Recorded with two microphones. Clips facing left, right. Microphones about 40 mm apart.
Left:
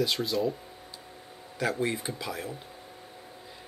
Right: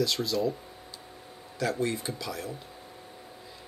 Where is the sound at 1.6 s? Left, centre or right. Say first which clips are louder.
Even; left.